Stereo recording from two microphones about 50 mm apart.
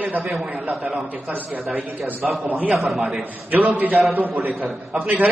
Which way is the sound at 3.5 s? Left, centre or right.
Right.